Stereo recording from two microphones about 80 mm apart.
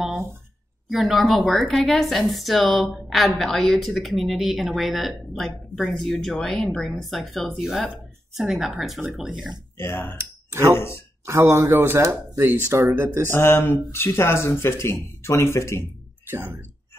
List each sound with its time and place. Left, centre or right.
0.8 s speech: centre
9.8 s speech: left
10.1 s a sound: right
11.2 s speech: right
13.3 s speech: left
16.3 s speech: right